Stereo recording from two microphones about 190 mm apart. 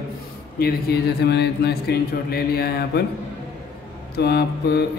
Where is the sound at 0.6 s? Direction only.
55° left (ahead or behind).